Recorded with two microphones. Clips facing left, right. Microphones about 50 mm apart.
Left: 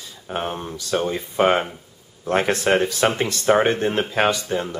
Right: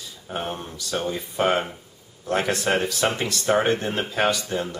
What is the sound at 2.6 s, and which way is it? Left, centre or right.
Speech, centre.